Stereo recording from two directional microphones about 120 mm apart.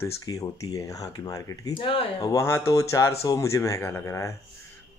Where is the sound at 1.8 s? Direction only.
45° left (ahead or behind).